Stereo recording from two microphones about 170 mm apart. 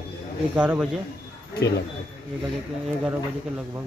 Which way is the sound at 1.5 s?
75° left (ahead or behind).